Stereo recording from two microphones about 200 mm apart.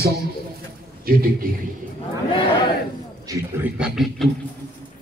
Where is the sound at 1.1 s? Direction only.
45° right (ahead or behind).